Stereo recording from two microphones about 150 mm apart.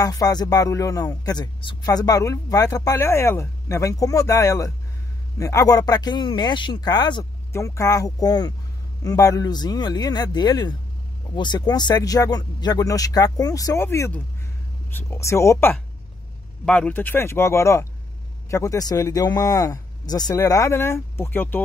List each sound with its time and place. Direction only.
0.0 s a man's voice: 25° left (ahead or behind)
16.6 s a man's voice: 10° left (ahead or behind)